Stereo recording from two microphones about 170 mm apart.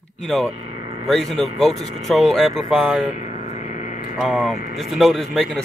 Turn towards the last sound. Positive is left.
turn(degrees=0)  # may be behind; listen again after turning